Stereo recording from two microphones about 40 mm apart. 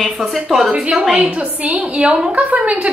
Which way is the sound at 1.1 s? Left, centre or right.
Right.